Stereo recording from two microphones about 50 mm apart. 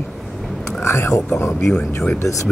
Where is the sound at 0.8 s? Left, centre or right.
Left.